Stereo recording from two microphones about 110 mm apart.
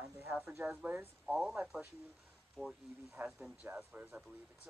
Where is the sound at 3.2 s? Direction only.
5° right (ahead or behind).